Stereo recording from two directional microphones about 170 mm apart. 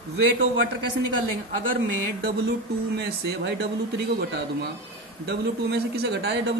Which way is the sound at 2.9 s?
75° right (ahead or behind).